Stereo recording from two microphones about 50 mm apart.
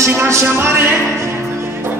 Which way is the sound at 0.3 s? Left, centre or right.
Right.